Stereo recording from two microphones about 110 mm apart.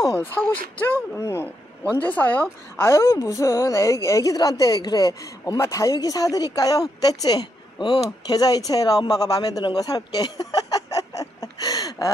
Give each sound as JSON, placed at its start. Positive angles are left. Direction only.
{"t": 0.2, "sound": "speech", "side_deg": 15}
{"t": 2.8, "sound": "a woman's voice", "side_deg": 25}
{"t": 10.5, "sound": "a sound", "side_deg": 35}